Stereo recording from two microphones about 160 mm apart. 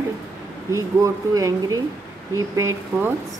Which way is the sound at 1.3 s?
20° right (ahead or behind).